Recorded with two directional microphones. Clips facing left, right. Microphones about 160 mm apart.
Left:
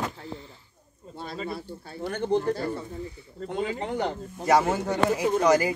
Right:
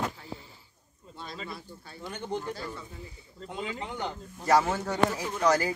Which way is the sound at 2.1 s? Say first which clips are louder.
Left 9 dB; 60° left (ahead or behind).